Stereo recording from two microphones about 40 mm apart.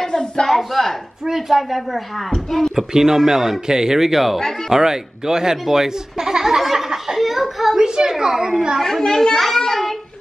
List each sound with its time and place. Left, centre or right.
0.0 s a sound: centre
0.5 s speech: centre
2.3 s a child's voice: centre
2.7 s speech: centre
7.8 s a woman's voice: centre
8.8 s a child's voice: centre